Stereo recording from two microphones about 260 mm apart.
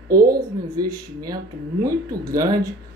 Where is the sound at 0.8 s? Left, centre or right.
Centre.